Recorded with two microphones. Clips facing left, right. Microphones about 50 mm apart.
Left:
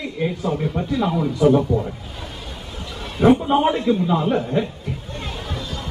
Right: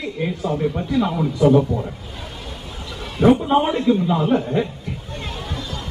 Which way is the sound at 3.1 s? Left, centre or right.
Centre.